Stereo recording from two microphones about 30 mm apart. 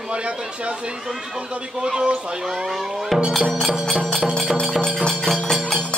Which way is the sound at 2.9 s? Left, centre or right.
Centre.